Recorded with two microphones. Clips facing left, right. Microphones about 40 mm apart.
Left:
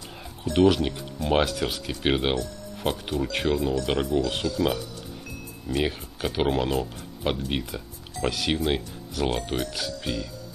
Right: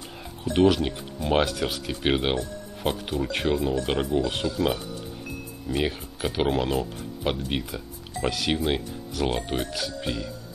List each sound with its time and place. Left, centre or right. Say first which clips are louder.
0.5 s speech: even; centre
4.4 s speech: even; right
5.7 s speech: even; centre